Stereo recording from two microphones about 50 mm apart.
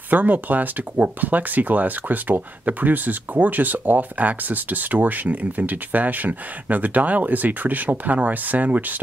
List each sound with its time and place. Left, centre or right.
0.1 s speech: right